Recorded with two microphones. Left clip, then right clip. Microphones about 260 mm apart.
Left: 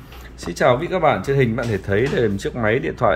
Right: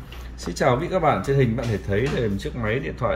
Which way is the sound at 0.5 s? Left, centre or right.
Centre.